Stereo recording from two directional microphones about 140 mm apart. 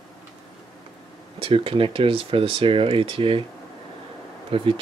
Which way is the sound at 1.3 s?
40° right (ahead or behind).